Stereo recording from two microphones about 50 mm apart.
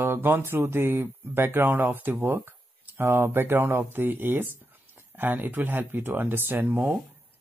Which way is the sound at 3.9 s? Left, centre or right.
Right.